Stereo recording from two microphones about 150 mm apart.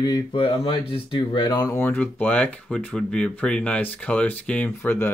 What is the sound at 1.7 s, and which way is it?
Speech, 15° left (ahead or behind).